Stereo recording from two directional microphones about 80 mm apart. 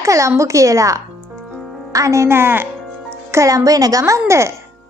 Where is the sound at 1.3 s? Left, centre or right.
Centre.